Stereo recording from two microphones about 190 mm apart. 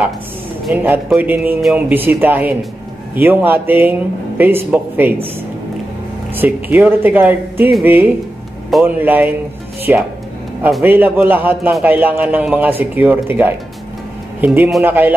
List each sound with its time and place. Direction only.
0.8 s a man's voice: 10° right (ahead or behind)
6.3 s a man's voice: 10° right (ahead or behind)